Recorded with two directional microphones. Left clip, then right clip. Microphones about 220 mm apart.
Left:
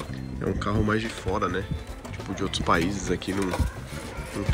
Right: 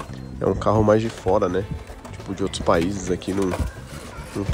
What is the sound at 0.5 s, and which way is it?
Speech, 20° right (ahead or behind).